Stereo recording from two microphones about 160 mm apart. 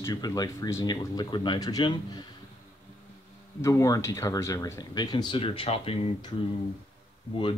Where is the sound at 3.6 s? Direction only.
20° left (ahead or behind).